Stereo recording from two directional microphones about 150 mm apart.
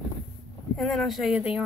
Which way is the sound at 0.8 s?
Centre (ahead or behind).